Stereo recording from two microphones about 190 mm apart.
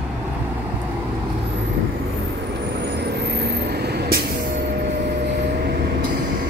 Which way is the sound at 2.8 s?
60° right (ahead or behind).